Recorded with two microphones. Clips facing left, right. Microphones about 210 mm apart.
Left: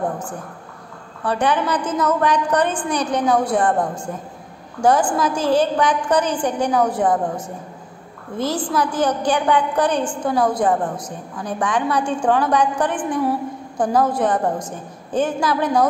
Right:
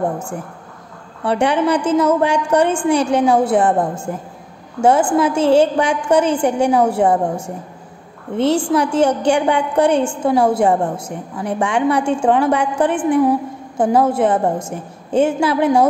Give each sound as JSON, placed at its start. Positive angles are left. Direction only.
{"t": 1.2, "sound": "a woman's voice", "side_deg": -25}
{"t": 4.8, "sound": "a woman's voice", "side_deg": -25}